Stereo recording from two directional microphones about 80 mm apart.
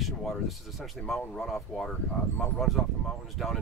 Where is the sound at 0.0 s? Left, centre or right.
Centre.